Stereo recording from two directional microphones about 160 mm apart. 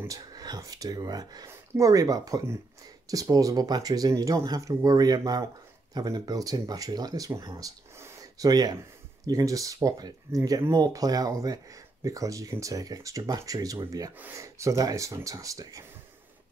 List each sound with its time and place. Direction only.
0.0 s speech: 20° right (ahead or behind)